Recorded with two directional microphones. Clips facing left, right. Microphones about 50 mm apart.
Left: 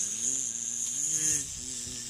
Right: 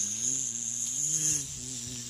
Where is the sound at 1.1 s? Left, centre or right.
Left.